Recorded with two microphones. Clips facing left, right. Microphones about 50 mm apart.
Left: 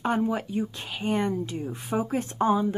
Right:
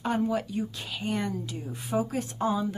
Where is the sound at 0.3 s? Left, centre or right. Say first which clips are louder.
Left 1 dB; left.